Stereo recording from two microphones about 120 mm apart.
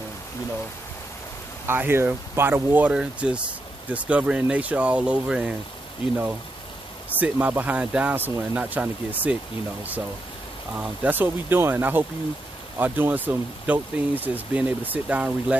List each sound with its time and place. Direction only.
1.7 s speech: 20° right (ahead or behind)
7.2 s speech: 15° right (ahead or behind)
10.7 s speech: 10° right (ahead or behind)